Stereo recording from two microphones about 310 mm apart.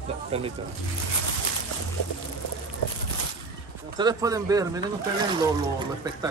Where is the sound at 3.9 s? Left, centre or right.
Centre.